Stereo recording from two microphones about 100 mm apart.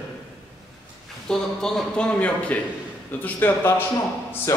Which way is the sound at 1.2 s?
5° left (ahead or behind).